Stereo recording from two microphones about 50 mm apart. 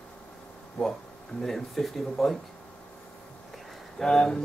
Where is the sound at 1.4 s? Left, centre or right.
Centre.